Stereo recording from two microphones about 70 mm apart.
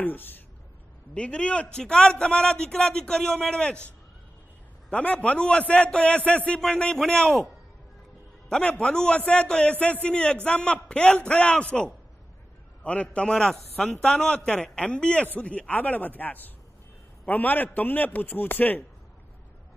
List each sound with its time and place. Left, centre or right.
0.0 s a man's voice: left
1.1 s a man's voice: centre
8.5 s a man's voice: centre
12.8 s a man's voice: centre